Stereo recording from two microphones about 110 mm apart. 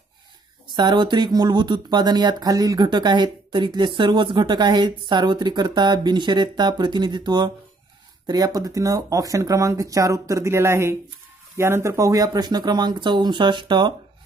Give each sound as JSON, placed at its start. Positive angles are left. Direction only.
{"t": 0.7, "sound": "speech", "side_deg": -40}
{"t": 8.5, "sound": "speech", "side_deg": -30}